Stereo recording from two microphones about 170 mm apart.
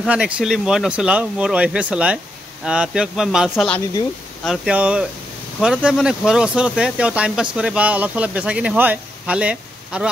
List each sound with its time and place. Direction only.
0.0 s speech: 5° right (ahead or behind)